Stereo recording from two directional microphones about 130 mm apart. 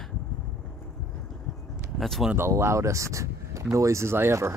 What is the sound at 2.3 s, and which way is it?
Speech, 20° right (ahead or behind).